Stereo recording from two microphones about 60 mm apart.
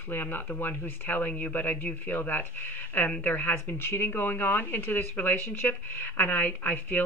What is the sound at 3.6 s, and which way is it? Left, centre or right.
Speech, left.